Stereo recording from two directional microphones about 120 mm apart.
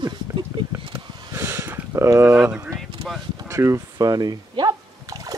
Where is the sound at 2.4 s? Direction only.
20° right (ahead or behind).